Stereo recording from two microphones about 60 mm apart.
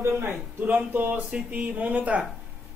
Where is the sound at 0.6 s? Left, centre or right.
Right.